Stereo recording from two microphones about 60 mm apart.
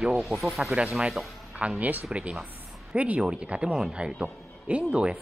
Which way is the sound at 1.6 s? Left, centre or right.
Right.